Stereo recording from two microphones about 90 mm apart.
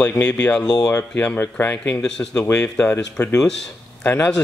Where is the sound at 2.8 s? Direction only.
30° left (ahead or behind).